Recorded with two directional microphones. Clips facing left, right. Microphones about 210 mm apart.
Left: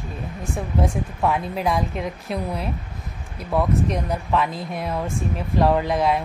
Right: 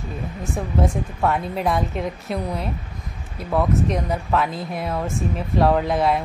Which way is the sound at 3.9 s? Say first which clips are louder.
Right 1 dB; centre (ahead or behind).